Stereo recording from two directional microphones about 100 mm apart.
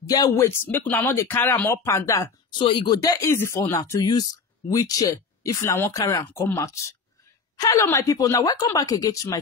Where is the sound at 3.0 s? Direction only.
30° left (ahead or behind).